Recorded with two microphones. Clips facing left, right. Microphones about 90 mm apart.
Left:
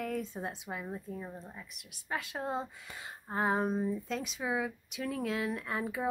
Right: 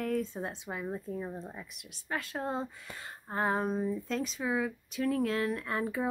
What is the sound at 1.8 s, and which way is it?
Speech, 10° left (ahead or behind).